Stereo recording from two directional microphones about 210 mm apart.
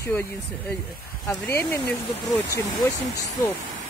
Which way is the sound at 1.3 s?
15° left (ahead or behind).